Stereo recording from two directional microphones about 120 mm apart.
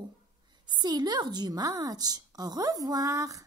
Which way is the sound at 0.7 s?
35° right (ahead or behind).